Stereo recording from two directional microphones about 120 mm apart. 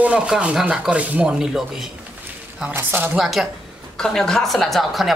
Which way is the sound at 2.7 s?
15° right (ahead or behind).